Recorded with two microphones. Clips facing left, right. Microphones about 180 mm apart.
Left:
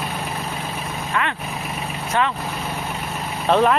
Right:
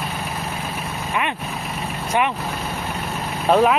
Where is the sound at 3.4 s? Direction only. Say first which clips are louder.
Right 1 dB; 5° right (ahead or behind).